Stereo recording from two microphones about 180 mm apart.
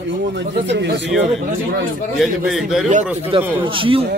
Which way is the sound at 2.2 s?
Centre (ahead or behind).